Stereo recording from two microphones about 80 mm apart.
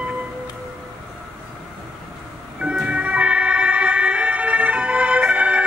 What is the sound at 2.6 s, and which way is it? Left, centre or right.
Emergency vehicle, centre.